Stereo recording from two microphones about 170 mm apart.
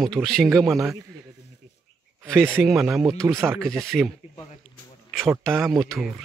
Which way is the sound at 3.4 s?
15° right (ahead or behind).